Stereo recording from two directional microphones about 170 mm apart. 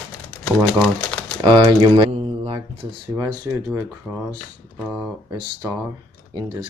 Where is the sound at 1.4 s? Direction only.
30° right (ahead or behind).